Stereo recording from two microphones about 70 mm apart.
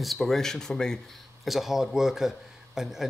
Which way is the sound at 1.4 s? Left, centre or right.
Centre.